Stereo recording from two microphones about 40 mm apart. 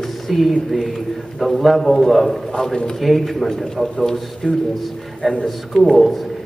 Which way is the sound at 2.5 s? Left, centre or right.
Centre.